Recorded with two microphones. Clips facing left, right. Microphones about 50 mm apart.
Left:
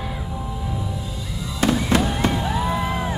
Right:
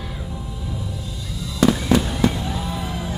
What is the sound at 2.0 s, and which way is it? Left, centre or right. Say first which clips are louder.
Fireworks: even; left.